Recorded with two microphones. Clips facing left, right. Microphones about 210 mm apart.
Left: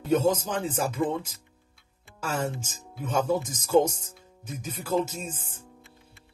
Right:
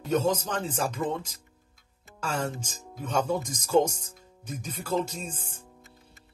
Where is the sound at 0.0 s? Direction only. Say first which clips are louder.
Left 2 dB; 10° left (ahead or behind).